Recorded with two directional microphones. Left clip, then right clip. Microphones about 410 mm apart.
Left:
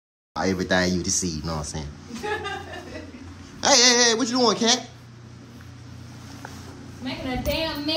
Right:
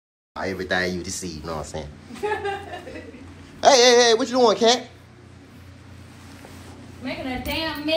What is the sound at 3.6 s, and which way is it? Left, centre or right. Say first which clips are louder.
Speech: right 4 dB; centre.